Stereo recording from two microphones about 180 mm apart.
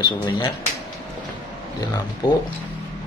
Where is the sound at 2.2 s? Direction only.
20° left (ahead or behind).